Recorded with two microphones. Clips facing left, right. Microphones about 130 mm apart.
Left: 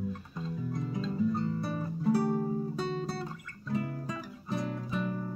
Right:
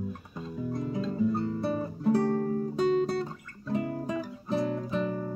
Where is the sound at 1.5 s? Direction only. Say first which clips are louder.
Right 4 dB; 25° right (ahead or behind).